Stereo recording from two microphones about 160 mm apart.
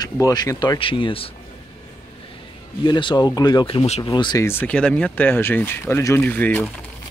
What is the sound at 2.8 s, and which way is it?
Speech, 30° left (ahead or behind).